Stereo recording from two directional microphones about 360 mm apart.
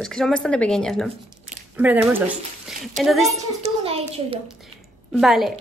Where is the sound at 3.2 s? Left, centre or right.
Centre.